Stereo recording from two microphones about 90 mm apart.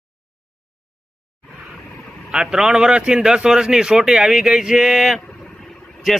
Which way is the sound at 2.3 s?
5° right (ahead or behind).